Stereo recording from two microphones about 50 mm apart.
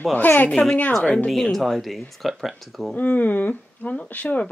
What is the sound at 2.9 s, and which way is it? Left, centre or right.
Speech, left.